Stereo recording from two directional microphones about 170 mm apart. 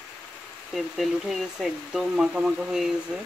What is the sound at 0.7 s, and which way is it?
Speech, centre (ahead or behind).